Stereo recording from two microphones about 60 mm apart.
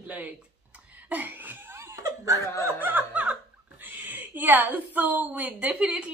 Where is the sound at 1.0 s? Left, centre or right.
Right.